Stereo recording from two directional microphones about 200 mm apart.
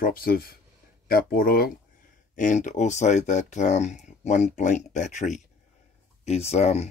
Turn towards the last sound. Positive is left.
turn(degrees=35)  # may be behind; listen again after turning